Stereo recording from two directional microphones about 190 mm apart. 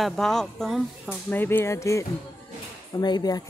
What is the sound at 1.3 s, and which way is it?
Speech, 10° left (ahead or behind).